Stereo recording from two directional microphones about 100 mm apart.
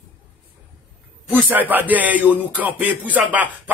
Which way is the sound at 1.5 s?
15° right (ahead or behind).